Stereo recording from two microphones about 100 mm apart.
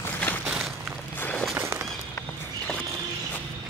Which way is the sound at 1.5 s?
20° right (ahead or behind).